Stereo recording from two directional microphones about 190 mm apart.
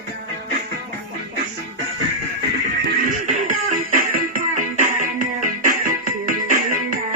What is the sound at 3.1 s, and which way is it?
Music, 45° right (ahead or behind).